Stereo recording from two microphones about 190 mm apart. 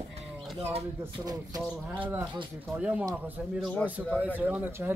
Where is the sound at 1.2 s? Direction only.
20° right (ahead or behind).